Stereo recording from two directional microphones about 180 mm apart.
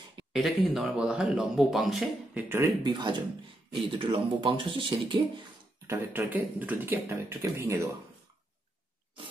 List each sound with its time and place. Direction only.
0.3 s speech: centre (ahead or behind)
2.5 s speech: 20° right (ahead or behind)
5.9 s speech: 15° right (ahead or behind)